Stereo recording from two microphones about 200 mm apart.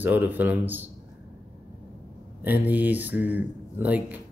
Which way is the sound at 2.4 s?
10° right (ahead or behind).